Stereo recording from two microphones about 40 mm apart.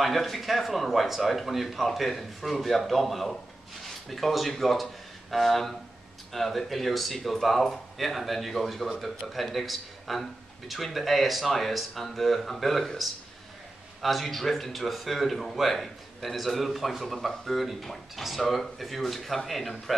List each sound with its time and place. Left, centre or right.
0.0 s speech: centre